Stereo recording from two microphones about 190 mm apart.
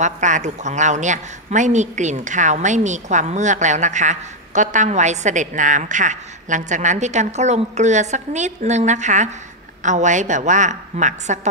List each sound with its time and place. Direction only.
0.0 s a woman's voice: 40° right (ahead or behind)